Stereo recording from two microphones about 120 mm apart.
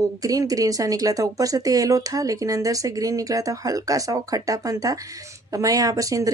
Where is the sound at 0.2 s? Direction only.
30° right (ahead or behind).